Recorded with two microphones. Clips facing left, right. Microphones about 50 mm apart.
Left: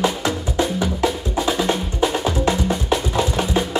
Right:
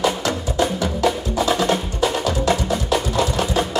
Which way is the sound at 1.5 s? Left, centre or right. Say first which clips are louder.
Right 1 dB; centre.